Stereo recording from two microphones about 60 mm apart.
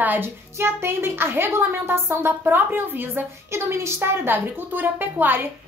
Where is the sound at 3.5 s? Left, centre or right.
Right.